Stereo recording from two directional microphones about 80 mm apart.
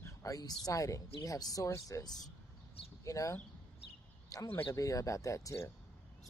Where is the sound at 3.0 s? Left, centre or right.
Left.